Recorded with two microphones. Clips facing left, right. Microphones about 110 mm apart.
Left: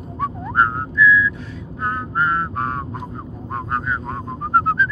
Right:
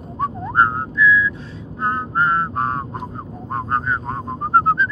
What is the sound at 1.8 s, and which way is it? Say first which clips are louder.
Vehicle: right 2 dB; 30° right (ahead or behind).